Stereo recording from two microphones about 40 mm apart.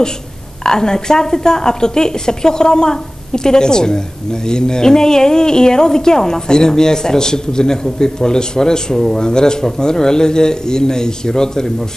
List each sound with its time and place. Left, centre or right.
0.7 s a woman's voice: centre